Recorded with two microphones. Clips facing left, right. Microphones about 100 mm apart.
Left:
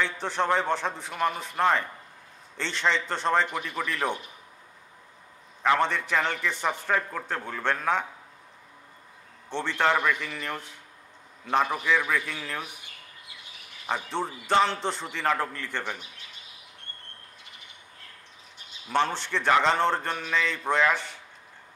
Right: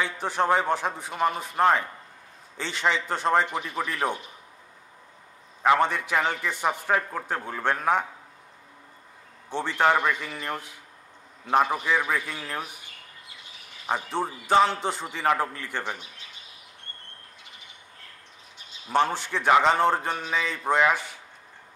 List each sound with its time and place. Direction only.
0.0 s a man's voice: 5° right (ahead or behind)
1.1 s a man's voice: 20° right (ahead or behind)
3.4 s speech: 20° right (ahead or behind)
3.8 s a man's voice: 10° right (ahead or behind)
5.6 s a man's voice: 10° right (ahead or behind)
9.5 s a man's voice: 5° right (ahead or behind)
11.6 s a man's voice: 20° right (ahead or behind)
14.0 s a man's voice: 5° right (ahead or behind)
15.8 s speech: 20° right (ahead or behind)
18.9 s a man's voice: 10° right (ahead or behind)